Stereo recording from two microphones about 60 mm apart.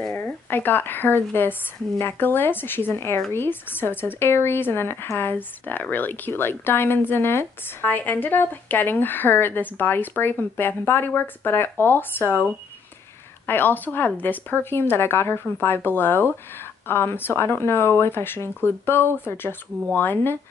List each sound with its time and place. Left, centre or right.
0.2 s speech: left
13.5 s speech: left